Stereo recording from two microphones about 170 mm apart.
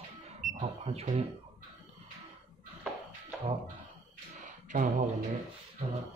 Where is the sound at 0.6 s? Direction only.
40° right (ahead or behind).